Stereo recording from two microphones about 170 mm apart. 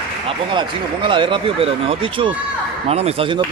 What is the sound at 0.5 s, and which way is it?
Speech, 30° right (ahead or behind).